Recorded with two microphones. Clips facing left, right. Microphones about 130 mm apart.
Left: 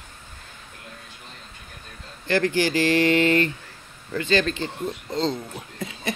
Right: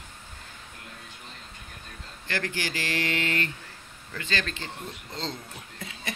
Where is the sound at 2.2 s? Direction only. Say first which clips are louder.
Left 11 dB; 25° left (ahead or behind).